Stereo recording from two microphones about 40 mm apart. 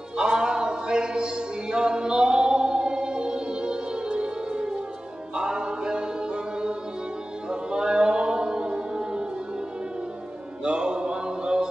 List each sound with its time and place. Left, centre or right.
0.2 s music: right
5.3 s a capella: right
7.4 s music: right
10.6 s mantra: right